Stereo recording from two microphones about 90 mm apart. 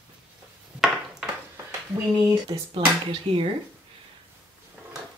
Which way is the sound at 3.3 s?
60° right (ahead or behind).